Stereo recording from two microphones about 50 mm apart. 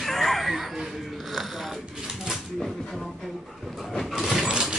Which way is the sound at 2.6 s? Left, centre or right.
Centre.